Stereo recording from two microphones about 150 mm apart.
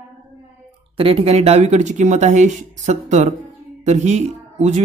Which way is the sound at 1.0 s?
40° right (ahead or behind).